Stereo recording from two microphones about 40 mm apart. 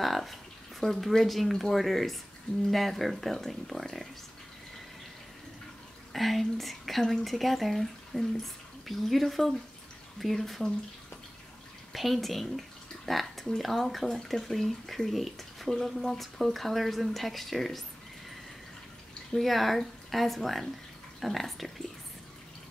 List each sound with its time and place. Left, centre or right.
0.0 s speech: centre
6.1 s speech: centre
11.9 s speech: centre
19.4 s speech: centre